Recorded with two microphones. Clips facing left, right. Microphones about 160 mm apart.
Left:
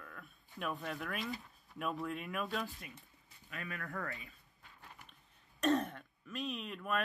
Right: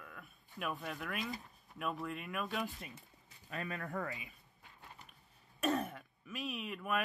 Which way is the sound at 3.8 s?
20° right (ahead or behind).